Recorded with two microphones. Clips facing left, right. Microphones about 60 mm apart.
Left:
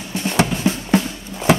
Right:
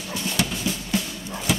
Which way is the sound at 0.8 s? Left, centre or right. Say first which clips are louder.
Left 8 dB; left.